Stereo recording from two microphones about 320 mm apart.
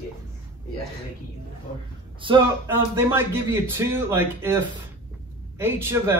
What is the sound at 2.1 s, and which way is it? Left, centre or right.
Speech, centre.